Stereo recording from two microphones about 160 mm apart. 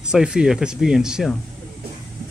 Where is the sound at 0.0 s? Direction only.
5° right (ahead or behind).